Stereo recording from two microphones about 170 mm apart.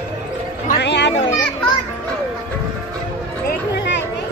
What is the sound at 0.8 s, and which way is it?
Speech, 90° left.